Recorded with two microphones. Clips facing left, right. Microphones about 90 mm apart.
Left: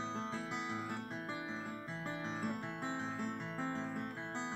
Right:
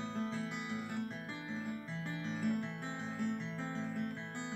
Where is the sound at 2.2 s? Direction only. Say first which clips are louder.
Right 5 dB; 35° left (ahead or behind).